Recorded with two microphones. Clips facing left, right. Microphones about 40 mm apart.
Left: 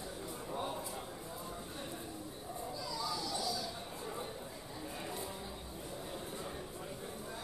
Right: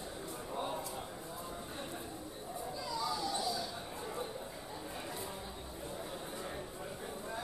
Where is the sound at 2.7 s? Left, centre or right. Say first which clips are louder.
Right 3 dB; right.